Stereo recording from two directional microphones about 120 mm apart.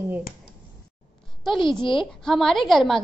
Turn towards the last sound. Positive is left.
turn(degrees=0)  # may be behind; listen again after turning